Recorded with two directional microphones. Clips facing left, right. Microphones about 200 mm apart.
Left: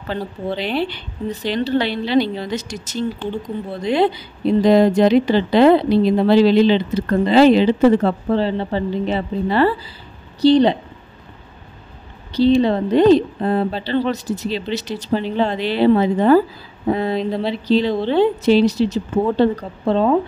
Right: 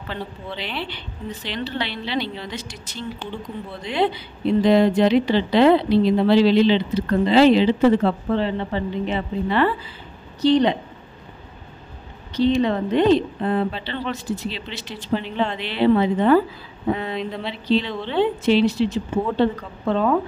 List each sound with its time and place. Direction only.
0.1 s a woman's voice: 40° left (ahead or behind)
12.3 s a woman's voice: 35° left (ahead or behind)